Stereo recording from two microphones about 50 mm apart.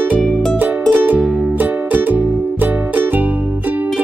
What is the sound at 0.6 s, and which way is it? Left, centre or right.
Music, right.